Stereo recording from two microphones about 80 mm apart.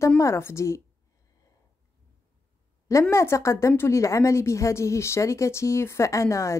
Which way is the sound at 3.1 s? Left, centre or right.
Left.